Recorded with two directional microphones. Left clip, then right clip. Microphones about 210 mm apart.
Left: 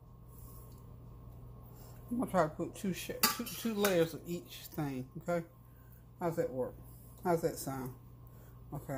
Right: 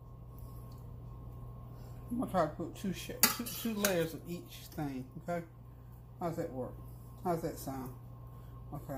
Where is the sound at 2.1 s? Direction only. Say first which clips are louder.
Left 1 dB; 45° left (ahead or behind).